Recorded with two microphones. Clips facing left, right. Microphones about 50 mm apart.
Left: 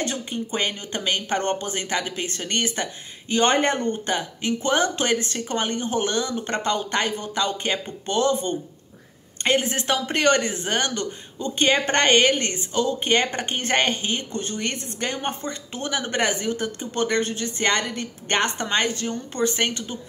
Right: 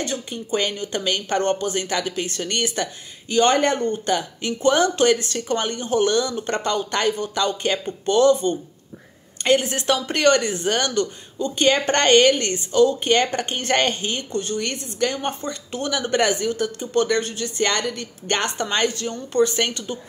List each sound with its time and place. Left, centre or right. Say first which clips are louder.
0.0 s speech: even; left
0.5 s speech: right 6 dB; left